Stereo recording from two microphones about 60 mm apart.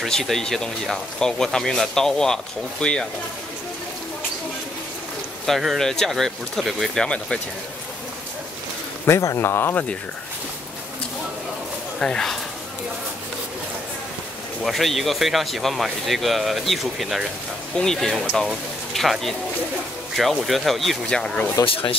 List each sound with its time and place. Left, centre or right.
0.0 s speech: centre
5.5 s speech: centre
5.8 s speech: centre
9.4 s speech: left
12.0 s speech: centre
14.6 s speech: centre
17.7 s speech: centre
21.6 s speech: left